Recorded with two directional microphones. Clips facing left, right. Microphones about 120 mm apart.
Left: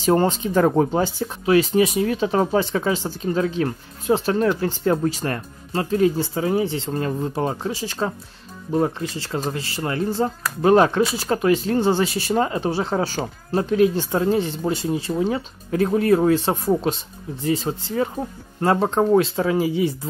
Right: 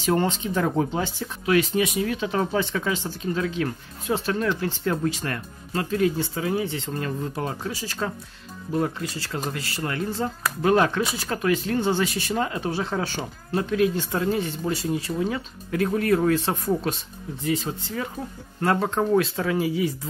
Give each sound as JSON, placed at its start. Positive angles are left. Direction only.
{"t": 0.0, "sound": "speech", "side_deg": 35}